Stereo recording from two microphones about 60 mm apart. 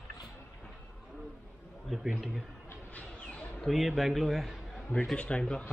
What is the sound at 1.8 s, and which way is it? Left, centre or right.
Speech, centre.